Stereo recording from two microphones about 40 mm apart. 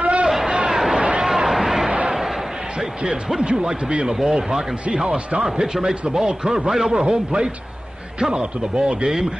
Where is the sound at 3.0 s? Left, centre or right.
Right.